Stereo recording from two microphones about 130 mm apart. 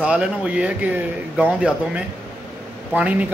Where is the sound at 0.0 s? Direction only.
10° right (ahead or behind).